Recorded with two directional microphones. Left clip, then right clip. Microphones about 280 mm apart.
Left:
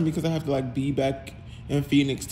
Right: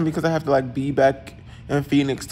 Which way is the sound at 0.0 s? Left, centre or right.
Centre.